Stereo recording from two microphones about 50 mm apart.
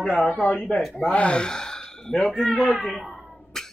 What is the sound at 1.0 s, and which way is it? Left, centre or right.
Speech, left.